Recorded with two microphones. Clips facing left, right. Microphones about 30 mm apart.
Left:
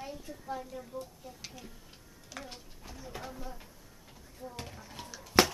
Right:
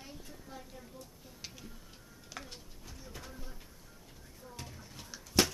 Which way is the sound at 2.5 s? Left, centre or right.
Centre.